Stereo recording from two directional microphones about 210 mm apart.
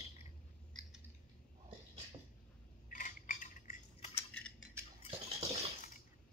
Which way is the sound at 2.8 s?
40° left (ahead or behind).